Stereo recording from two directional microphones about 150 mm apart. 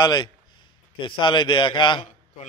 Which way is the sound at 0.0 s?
30° left (ahead or behind).